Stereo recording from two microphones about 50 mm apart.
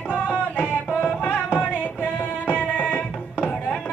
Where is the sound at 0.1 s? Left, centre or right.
Left.